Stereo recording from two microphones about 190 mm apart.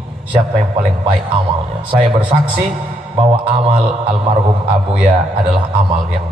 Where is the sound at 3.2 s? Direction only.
25° right (ahead or behind).